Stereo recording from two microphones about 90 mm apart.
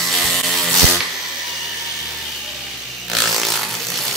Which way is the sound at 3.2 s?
Centre (ahead or behind).